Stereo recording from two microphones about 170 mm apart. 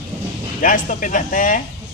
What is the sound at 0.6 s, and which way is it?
Speech, 50° left (ahead or behind).